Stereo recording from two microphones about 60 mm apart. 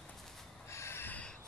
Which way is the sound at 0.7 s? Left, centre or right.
Left.